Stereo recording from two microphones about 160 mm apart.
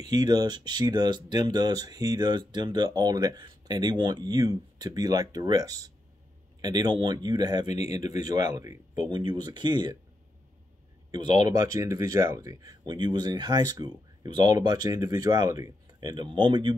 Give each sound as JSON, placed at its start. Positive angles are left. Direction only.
{"t": 0.0, "sound": "speech", "side_deg": -25}
{"t": 7.6, "sound": "speech", "side_deg": 45}
{"t": 8.3, "sound": "speech", "side_deg": -25}
{"t": 11.1, "sound": "speech", "side_deg": -30}